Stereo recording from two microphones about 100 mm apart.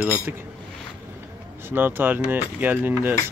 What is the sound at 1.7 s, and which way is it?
Speech, 20° right (ahead or behind).